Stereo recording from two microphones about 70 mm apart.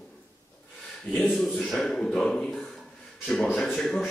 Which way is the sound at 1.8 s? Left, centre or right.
Centre.